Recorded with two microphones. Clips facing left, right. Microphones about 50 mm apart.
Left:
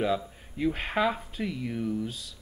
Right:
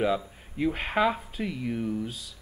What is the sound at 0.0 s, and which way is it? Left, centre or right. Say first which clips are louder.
Speech: right 1 dB; centre.